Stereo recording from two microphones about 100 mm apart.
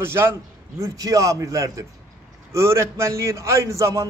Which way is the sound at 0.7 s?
35° right (ahead or behind).